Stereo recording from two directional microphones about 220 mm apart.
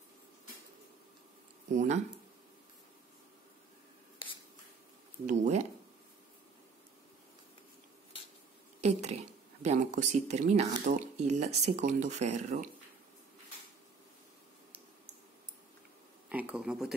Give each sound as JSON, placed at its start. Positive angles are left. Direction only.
{"t": 5.2, "sound": "speech", "side_deg": -35}
{"t": 8.8, "sound": "speech", "side_deg": -30}
{"t": 16.3, "sound": "a sound", "side_deg": -5}